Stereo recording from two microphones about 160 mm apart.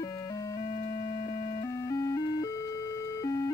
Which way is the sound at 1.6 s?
20° left (ahead or behind).